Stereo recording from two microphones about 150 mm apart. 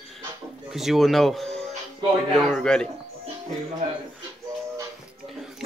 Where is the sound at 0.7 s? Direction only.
Centre (ahead or behind).